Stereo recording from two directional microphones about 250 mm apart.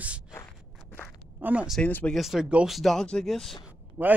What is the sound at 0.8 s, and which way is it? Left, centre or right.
Walk, centre.